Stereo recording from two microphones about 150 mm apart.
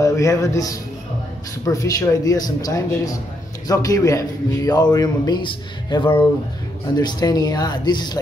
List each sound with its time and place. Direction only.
0.0 s a man's voice: 20° left (ahead or behind)